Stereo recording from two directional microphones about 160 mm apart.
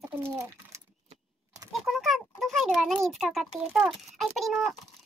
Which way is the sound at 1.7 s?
Centre (ahead or behind).